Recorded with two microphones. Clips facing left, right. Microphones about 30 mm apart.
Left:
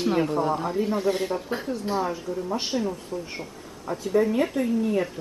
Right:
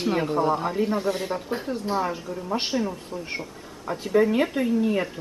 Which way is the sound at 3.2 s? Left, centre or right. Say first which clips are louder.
Right 3 dB; right.